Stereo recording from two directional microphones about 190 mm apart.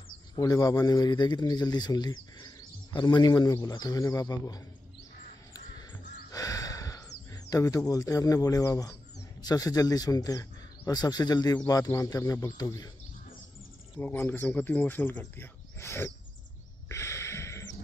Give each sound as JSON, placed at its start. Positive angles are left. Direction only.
{"t": 0.4, "sound": "speech", "side_deg": 20}
{"t": 6.3, "sound": "gasp", "side_deg": 20}
{"t": 7.4, "sound": "speech", "side_deg": 15}
{"t": 13.9, "sound": "speech", "side_deg": 10}
{"t": 16.9, "sound": "a sound", "side_deg": 15}